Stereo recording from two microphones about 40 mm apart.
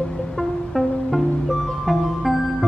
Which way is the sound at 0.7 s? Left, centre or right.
Centre.